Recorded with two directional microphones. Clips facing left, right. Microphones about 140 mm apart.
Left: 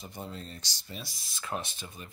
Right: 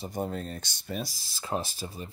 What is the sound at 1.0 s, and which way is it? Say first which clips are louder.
Speech: right 3 dB; 30° right (ahead or behind).